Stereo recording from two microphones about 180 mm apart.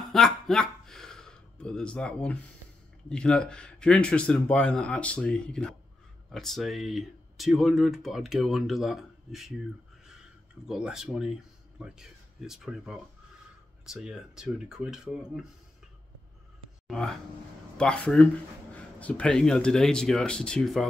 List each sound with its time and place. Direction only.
0.1 s a sound: centre (ahead or behind)
3.1 s speech: 5° left (ahead or behind)
10.7 s speech: 5° right (ahead or behind)
16.8 s speech: 5° left (ahead or behind)